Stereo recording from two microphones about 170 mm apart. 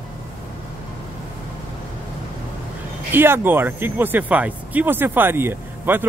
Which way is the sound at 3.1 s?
10° right (ahead or behind).